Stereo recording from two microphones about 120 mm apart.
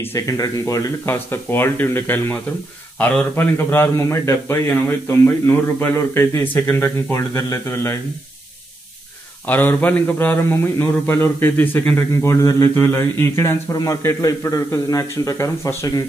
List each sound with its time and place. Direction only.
0.0 s a man's voice: 25° left (ahead or behind)
9.5 s a man's voice: 15° left (ahead or behind)